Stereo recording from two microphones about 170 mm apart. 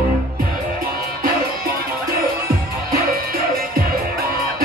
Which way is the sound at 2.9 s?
65° right (ahead or behind).